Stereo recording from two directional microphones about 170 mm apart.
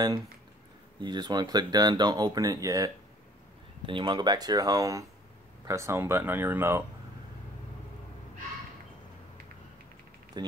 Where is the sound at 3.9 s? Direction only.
30° right (ahead or behind).